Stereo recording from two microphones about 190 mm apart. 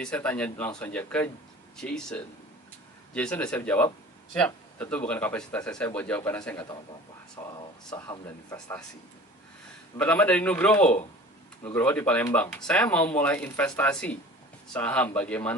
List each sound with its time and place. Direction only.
0.0 s speech: 5° left (ahead or behind)
7.9 s speech: 20° left (ahead or behind)
9.9 s speech: 5° left (ahead or behind)